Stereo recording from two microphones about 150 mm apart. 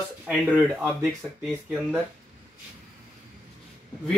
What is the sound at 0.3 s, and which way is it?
Speech, 5° right (ahead or behind).